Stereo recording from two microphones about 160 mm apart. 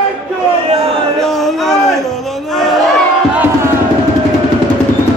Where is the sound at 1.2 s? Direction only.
Centre (ahead or behind).